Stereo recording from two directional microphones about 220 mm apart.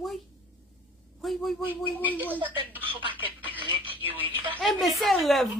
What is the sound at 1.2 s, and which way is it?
Speech, centre (ahead or behind).